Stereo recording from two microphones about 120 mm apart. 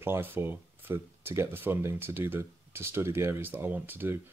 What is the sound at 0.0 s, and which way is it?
Speech, 15° right (ahead or behind).